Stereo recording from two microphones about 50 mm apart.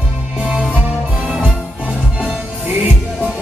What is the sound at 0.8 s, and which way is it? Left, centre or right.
Music, right.